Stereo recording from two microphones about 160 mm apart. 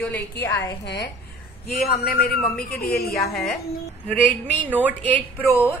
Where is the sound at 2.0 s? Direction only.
75° left (ahead or behind).